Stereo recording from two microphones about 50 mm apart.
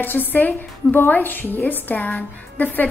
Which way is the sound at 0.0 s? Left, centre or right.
Left.